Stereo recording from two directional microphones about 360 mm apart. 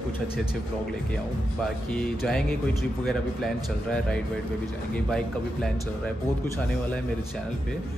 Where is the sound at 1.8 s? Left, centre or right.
Centre.